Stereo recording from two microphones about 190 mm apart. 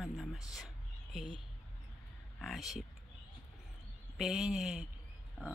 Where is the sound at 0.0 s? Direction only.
Centre (ahead or behind).